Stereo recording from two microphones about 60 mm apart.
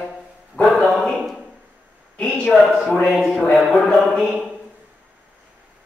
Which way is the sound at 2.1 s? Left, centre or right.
Centre.